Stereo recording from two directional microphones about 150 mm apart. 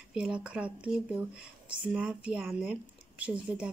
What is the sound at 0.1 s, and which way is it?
Speech, 5° right (ahead or behind).